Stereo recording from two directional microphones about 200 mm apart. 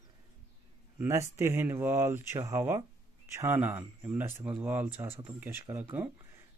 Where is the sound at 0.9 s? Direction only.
15° right (ahead or behind).